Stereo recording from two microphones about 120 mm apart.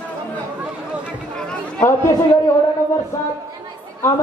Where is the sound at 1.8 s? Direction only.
25° left (ahead or behind).